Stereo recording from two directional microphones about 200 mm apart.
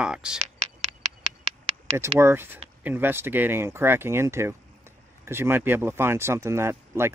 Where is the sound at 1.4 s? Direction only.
30° right (ahead or behind).